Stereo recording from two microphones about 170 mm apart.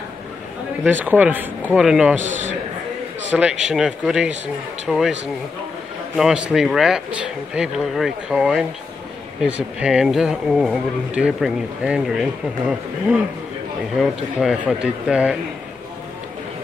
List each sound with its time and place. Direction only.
0.8 s speech: 10° right (ahead or behind)
2.1 s a man's voice: 45° right (ahead or behind)
3.3 s speech: centre (ahead or behind)
6.1 s speech: 5° right (ahead or behind)